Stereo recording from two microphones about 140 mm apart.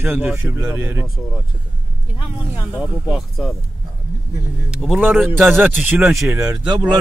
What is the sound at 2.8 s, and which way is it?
Speech, centre (ahead or behind).